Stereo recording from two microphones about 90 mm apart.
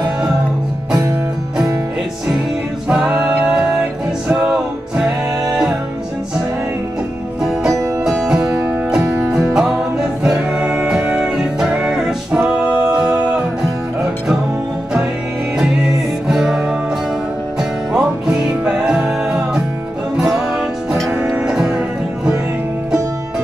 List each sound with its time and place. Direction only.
2.9 s music: 10° right (ahead or behind)
7.4 s music: 5° right (ahead or behind)
8.5 s music: 30° right (ahead or behind)
9.3 s music: 10° right (ahead or behind)
16.3 s music: 5° right (ahead or behind)